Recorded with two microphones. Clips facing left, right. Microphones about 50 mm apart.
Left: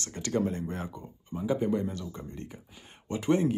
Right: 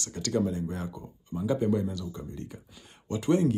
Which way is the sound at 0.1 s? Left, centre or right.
Left.